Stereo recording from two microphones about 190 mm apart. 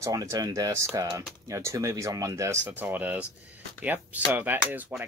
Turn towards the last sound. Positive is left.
turn(degrees=-10)  # may be behind; listen again after turning